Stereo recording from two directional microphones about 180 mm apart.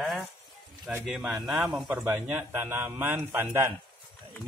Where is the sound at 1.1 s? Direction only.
Centre (ahead or behind).